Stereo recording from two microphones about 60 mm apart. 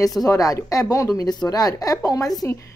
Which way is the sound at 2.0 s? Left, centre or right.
Left.